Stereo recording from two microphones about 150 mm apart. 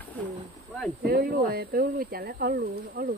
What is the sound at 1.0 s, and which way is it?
Speech, 90° right.